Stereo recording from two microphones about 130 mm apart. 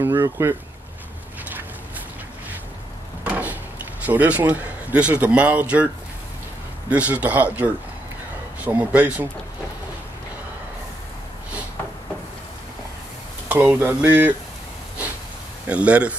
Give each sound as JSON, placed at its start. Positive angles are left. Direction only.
{"t": 0.0, "sound": "speech", "side_deg": -20}
{"t": 3.3, "sound": "a sound", "side_deg": -10}
{"t": 4.0, "sound": "a man's voice", "side_deg": -15}
{"t": 6.9, "sound": "a man's voice", "side_deg": -10}
{"t": 13.5, "sound": "a man's voice", "side_deg": -15}
{"t": 15.6, "sound": "a man's voice", "side_deg": -10}